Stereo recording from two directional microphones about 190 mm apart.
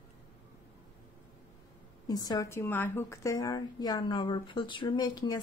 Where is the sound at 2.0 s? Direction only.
20° left (ahead or behind).